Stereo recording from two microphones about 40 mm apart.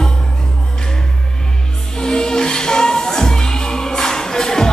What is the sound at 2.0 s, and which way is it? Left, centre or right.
Music, centre.